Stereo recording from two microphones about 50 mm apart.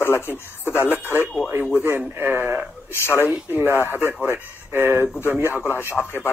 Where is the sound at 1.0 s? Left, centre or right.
Right.